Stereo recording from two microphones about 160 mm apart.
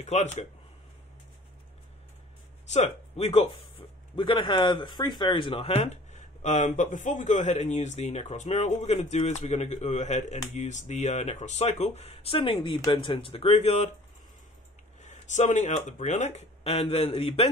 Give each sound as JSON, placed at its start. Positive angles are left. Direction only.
{"t": 0.0, "sound": "speech", "side_deg": 45}
{"t": 2.6, "sound": "speech", "side_deg": 45}
{"t": 15.0, "sound": "speech", "side_deg": 50}